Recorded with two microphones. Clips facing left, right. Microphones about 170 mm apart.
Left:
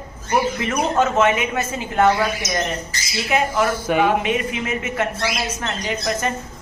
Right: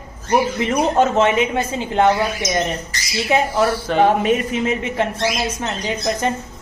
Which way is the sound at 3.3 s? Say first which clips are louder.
Right 2 dB; 30° right (ahead or behind).